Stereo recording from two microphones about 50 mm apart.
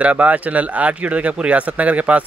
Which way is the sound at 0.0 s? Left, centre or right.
Right.